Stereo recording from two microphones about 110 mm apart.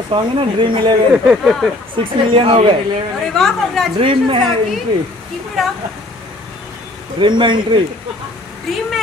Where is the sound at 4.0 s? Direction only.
50° right (ahead or behind).